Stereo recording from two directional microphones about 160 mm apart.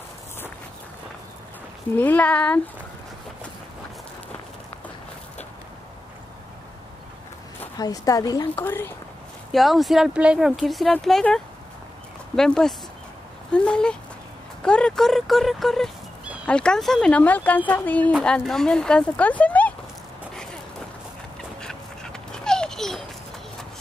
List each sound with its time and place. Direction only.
2.0 s speech: 10° left (ahead or behind)
7.7 s a woman's voice: 20° left (ahead or behind)
9.5 s speech: centre (ahead or behind)
21.5 s dog: 5° left (ahead or behind)